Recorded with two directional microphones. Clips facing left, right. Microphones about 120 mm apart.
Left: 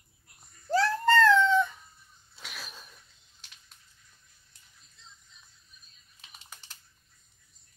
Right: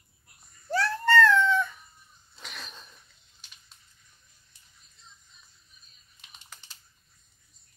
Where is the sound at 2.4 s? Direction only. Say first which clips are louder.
Right 1 dB; centre (ahead or behind).